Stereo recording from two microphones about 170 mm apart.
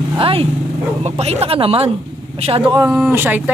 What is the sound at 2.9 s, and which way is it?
Speech, 10° right (ahead or behind).